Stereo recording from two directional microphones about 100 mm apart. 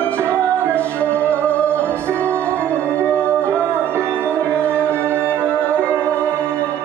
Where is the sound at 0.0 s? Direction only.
15° left (ahead or behind).